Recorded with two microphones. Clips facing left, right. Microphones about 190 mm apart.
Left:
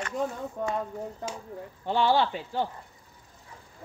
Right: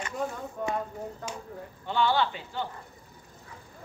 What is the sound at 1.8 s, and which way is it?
Speech, 35° left (ahead or behind).